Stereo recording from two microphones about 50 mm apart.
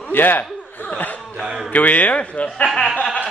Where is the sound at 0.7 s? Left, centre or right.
Left.